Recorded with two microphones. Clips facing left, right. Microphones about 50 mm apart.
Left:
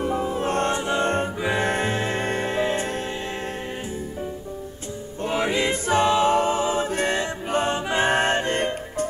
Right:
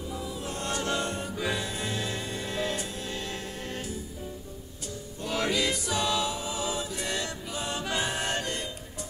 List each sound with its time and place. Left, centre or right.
0.0 s music: left
0.7 s choir: left
1.0 s music: left
5.2 s music: left
6.3 s music: left
7.7 s choir: left
8.1 s music: left